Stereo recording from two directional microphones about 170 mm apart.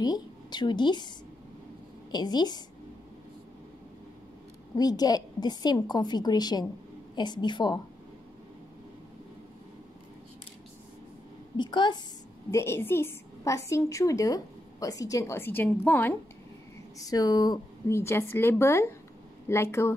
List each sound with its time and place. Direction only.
0.0 s a woman's voice: 25° left (ahead or behind)
4.7 s a woman's voice: 20° left (ahead or behind)
11.5 s a woman's voice: 25° left (ahead or behind)
12.4 s a woman's voice: 15° left (ahead or behind)
17.0 s a woman's voice: 20° left (ahead or behind)